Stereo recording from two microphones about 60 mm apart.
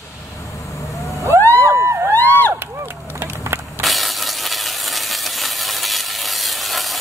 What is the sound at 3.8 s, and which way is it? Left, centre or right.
Hiss, centre.